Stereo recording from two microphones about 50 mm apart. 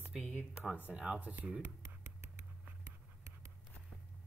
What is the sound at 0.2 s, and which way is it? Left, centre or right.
Speech, left.